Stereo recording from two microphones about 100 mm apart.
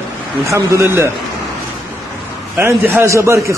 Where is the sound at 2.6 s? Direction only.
25° right (ahead or behind).